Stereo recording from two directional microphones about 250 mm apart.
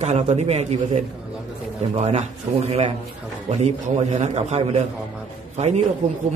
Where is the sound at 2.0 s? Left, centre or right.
Right.